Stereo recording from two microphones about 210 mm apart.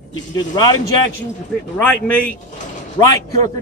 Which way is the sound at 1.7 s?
5° left (ahead or behind).